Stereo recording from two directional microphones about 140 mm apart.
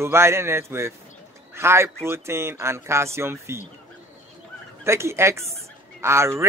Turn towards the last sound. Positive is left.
turn(degrees=-20)  # may be behind; listen again after turning